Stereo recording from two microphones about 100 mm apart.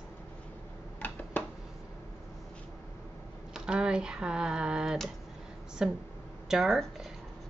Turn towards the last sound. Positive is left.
turn(degrees=0)  # may be behind; listen again after turning